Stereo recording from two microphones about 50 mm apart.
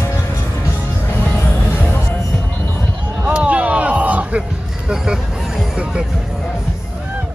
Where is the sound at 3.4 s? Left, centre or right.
Right.